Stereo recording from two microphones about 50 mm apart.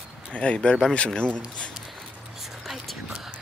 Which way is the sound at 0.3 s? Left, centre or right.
Left.